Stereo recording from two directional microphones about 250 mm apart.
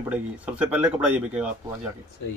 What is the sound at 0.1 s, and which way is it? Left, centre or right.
Speech, centre.